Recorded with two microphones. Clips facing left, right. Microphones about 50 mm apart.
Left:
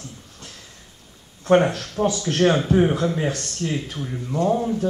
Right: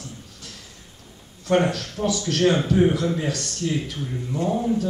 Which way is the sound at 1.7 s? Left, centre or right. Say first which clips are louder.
Left 2 dB; left.